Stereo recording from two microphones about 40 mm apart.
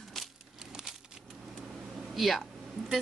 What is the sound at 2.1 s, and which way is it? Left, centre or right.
Speech, centre.